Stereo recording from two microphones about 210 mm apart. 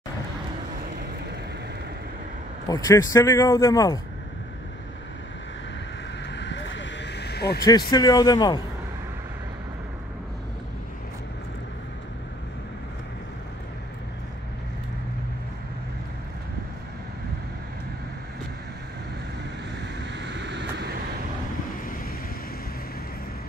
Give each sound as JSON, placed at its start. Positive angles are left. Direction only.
{"t": 2.7, "sound": "a man's voice", "side_deg": 15}
{"t": 6.3, "sound": "vehicle", "side_deg": 60}
{"t": 7.9, "sound": "a man's voice", "side_deg": 20}
{"t": 20.2, "sound": "vehicle", "side_deg": -55}